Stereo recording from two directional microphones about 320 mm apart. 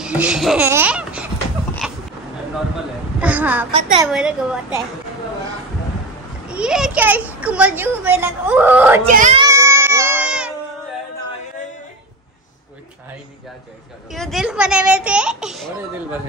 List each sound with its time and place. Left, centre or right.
0.0 s speech: centre
1.8 s a sound: centre
3.2 s a child's voice: centre
3.7 s a woman's voice: centre
4.1 s a child's voice: centre
6.5 s a child's voice: centre
9.0 s a woman's voice: right
9.5 s child singing: centre
14.1 s a child's voice: centre